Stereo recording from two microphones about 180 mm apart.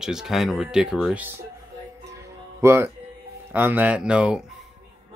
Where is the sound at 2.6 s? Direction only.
15° right (ahead or behind).